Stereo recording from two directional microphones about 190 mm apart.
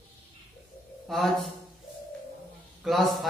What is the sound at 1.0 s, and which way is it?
Speech, centre (ahead or behind).